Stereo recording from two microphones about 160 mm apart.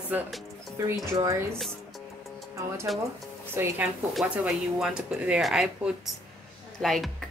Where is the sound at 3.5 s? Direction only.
15° right (ahead or behind).